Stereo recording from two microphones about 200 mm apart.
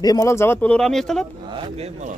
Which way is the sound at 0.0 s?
20° left (ahead or behind).